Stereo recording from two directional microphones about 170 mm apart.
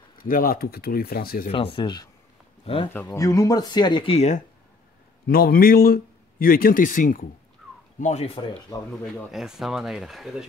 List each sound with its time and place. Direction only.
0.2 s speech: 55° left (ahead or behind)
1.5 s speech: 30° left (ahead or behind)
2.9 s speech: 15° left (ahead or behind); by 4.4 s 35° left (ahead or behind)
5.3 s speech: 60° left (ahead or behind)
8.0 s speech: 40° left (ahead or behind)
8.4 s speech: 25° left (ahead or behind)
9.3 s speech: centre (ahead or behind)